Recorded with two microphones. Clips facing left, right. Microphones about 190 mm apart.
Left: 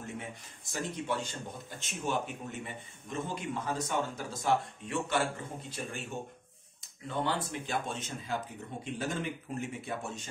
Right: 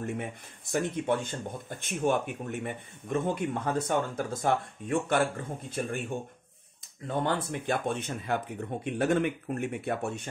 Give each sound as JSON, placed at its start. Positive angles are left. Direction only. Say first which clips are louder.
{"t": 0.0, "sound": "speech", "louder": "right 7 dB", "side_deg": -60}
{"t": 7.1, "sound": "speech", "louder": "right 4 dB", "side_deg": -55}